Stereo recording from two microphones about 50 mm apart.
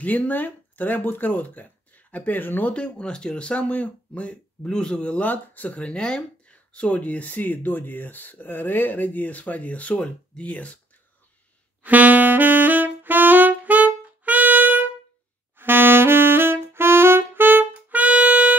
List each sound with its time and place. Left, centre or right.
0.0 s speech: left
2.7 s speech: left
5.3 s speech: left
5.8 s speech: centre
11.8 s saxophone: right
17.7 s music: right